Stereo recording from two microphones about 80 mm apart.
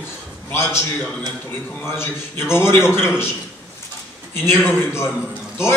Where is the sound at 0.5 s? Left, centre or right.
Left.